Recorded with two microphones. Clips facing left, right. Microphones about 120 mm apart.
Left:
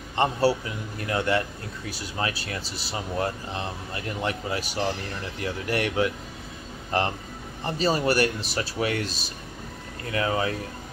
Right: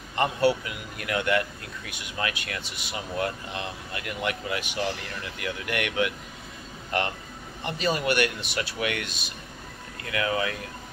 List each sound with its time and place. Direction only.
0.1 s speech: 30° left (ahead or behind)